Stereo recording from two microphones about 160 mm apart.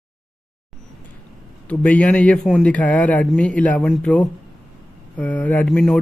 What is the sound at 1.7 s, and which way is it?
A man's voice, 10° left (ahead or behind).